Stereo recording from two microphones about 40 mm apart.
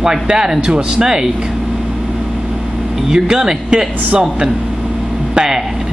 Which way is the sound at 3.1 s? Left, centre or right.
Centre.